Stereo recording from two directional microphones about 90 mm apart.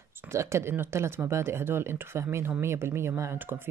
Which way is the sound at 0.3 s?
30° right (ahead or behind).